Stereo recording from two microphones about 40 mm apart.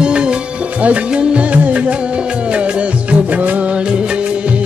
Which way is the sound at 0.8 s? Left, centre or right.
Right.